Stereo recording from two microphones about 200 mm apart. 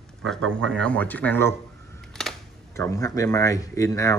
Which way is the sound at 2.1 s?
5° left (ahead or behind).